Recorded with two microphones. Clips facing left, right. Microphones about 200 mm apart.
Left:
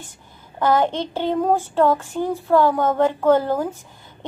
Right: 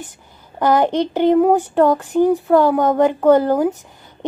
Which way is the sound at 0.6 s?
15° right (ahead or behind).